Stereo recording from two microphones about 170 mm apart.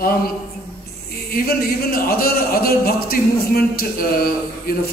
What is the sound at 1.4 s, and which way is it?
Speech, 65° left (ahead or behind).